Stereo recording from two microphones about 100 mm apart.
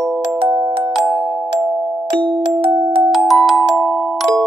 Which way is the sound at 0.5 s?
60° right (ahead or behind).